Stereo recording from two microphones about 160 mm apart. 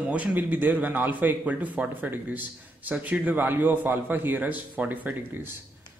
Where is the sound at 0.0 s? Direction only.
10° right (ahead or behind).